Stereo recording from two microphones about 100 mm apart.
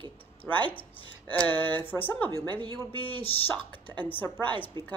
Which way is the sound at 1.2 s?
15° left (ahead or behind).